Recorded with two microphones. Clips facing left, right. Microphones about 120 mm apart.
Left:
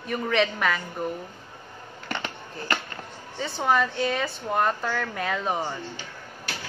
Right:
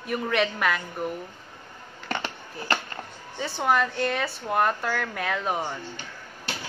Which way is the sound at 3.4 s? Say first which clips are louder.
Even; centre (ahead or behind).